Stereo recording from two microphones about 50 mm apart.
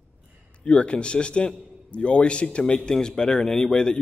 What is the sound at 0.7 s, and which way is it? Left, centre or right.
A man's voice, left.